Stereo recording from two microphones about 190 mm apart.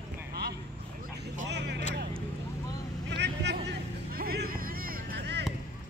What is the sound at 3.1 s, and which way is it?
Vehicle, 65° right (ahead or behind).